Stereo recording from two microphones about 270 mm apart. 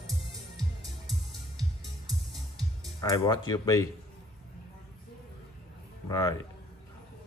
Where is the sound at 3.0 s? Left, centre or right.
Centre.